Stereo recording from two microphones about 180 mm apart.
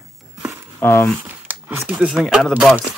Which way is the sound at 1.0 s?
10° right (ahead or behind).